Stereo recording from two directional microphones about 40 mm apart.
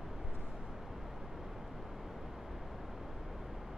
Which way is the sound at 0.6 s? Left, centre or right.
Centre.